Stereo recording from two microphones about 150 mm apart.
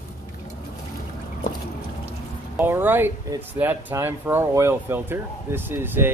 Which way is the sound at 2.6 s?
15° right (ahead or behind).